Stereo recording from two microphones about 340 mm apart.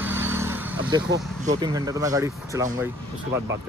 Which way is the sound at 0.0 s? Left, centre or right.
Centre.